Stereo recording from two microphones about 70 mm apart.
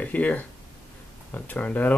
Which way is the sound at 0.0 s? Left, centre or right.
Left.